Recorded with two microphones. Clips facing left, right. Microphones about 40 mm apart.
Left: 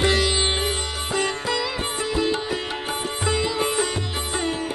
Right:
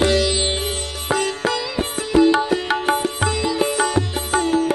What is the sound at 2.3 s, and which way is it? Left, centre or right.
Music, right.